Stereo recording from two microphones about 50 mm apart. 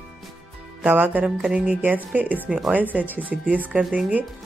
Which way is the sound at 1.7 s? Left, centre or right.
Right.